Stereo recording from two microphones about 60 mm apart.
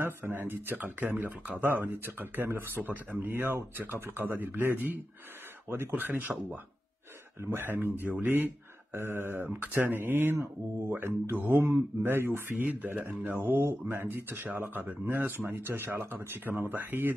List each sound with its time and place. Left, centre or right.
0.0 s speech: right
7.4 s speech: right
13.7 s speech: right
14.0 s speech: right